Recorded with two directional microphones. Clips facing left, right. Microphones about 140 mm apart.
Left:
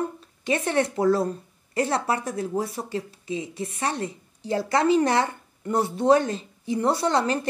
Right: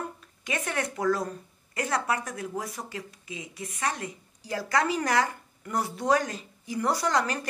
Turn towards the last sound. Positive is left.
turn(degrees=25)  # may be behind; listen again after turning